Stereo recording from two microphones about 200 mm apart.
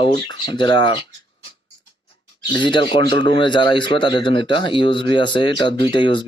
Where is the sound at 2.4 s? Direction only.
25° left (ahead or behind).